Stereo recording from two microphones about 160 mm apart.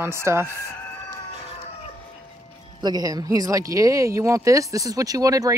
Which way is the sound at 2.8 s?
25° right (ahead or behind).